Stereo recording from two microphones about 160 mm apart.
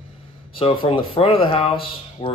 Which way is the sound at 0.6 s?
35° left (ahead or behind).